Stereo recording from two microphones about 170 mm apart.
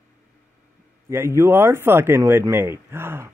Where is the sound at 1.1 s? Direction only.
15° right (ahead or behind).